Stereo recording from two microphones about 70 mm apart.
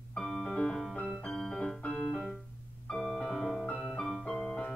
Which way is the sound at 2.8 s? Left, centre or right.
Centre.